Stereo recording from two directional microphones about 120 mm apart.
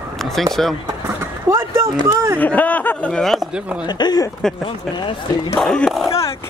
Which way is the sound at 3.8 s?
35° left (ahead or behind).